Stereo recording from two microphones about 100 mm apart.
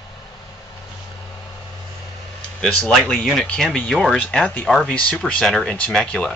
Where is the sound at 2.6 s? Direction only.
5° left (ahead or behind).